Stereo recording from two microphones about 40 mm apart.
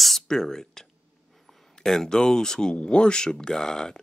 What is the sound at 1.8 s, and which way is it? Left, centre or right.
Speech, centre.